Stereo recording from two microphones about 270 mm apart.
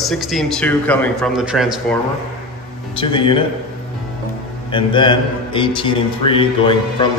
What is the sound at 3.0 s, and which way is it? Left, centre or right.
Speech, centre.